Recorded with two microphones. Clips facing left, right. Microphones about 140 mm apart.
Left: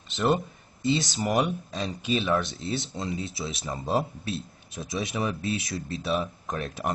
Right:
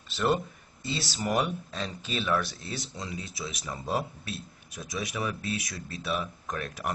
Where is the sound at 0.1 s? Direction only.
20° left (ahead or behind).